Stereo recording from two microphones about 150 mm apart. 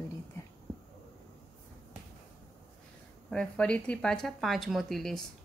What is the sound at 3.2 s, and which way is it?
Speech, 5° left (ahead or behind).